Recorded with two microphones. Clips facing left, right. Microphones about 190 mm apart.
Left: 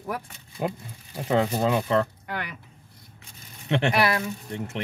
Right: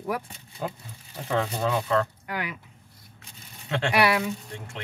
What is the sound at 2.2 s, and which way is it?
Speech, 10° right (ahead or behind).